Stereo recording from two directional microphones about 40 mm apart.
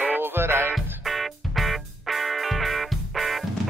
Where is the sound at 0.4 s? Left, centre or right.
Right.